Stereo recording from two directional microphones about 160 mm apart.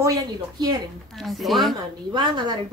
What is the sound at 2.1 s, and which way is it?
Speech, 25° right (ahead or behind).